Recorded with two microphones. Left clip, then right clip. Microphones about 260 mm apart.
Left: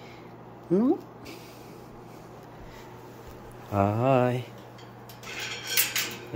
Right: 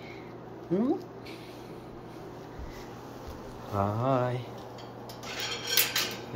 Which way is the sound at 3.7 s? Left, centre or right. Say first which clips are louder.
Left 5 dB; left.